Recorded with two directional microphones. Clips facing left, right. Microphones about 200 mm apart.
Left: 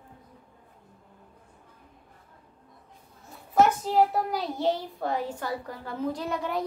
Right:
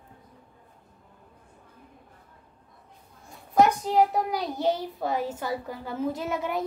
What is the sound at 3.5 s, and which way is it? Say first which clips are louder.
A child's voice: right 1 dB; centre (ahead or behind).